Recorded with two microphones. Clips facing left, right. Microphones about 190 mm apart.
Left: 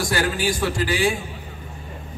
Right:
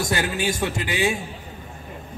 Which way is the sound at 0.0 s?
20° right (ahead or behind).